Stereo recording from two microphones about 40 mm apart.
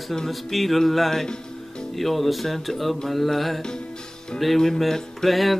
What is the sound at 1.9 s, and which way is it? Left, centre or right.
Speech, centre.